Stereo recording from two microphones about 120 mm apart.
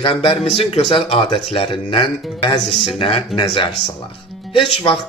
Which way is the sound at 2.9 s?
50° left (ahead or behind).